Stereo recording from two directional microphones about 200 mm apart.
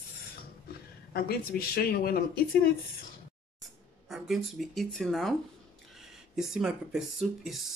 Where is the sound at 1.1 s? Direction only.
50° left (ahead or behind).